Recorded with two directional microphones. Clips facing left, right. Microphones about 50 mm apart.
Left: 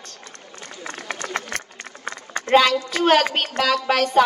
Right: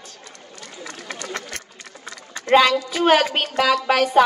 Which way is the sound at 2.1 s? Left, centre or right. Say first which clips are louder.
Left 1 dB; left.